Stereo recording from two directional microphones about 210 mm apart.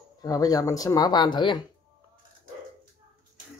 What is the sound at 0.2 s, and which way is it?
Speech, 15° left (ahead or behind).